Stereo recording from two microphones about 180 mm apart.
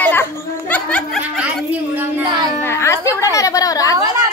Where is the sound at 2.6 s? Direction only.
15° left (ahead or behind).